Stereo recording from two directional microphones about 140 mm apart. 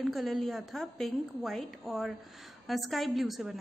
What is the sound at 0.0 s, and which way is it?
A woman's voice, centre (ahead or behind).